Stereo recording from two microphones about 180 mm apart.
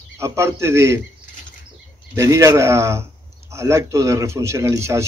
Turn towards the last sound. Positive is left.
turn(degrees=-15)  # may be behind; listen again after turning